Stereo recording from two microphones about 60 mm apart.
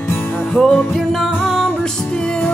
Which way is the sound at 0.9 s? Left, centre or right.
Centre.